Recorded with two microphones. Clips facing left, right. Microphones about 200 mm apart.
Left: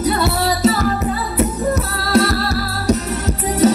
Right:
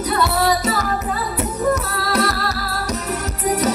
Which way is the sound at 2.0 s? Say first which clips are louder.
Left 6 dB; 30° left (ahead or behind).